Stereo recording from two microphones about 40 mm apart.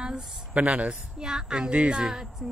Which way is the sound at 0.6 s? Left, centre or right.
Right.